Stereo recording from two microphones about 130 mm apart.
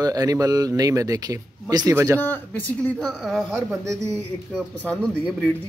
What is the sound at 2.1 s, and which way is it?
A man's voice, 15° left (ahead or behind).